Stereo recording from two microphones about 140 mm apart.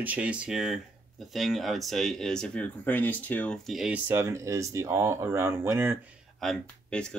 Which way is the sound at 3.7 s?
5° right (ahead or behind).